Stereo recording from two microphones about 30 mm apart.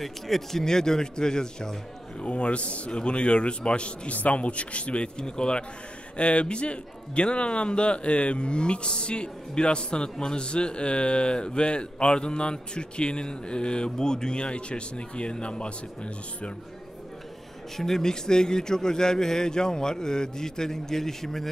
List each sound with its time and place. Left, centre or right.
0.0 s speech: centre
0.7 s a man's voice: centre
2.2 s a man's voice: left
4.1 s a man's voice: left
17.7 s speech: centre
18.0 s a man's voice: left